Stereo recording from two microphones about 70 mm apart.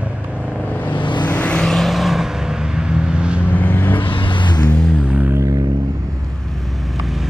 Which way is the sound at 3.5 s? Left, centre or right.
Left.